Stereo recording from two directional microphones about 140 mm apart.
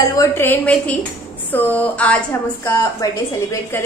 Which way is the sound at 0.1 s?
20° left (ahead or behind).